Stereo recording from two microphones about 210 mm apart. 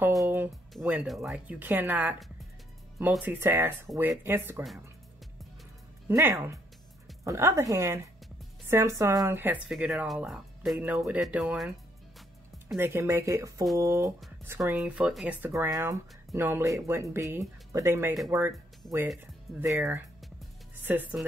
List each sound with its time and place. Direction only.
0.0 s speech: 5° right (ahead or behind)
6.0 s speech: 10° right (ahead or behind)
19.7 s speech: 5° right (ahead or behind)